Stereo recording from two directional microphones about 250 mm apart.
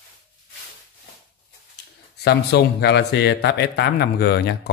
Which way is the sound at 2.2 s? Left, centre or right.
Left.